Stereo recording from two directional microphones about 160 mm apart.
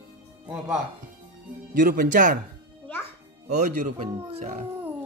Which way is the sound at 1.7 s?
55° right (ahead or behind).